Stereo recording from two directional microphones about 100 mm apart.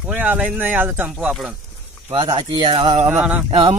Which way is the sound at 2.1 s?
55° right (ahead or behind).